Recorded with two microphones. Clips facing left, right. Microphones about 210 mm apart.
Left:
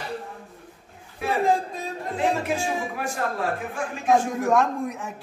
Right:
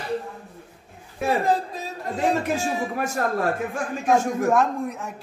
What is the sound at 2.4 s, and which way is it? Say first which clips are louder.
Speech: right 1 dB; 40° right (ahead or behind).